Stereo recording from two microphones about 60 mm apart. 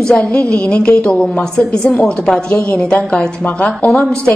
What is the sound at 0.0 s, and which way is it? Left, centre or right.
A woman's voice, centre.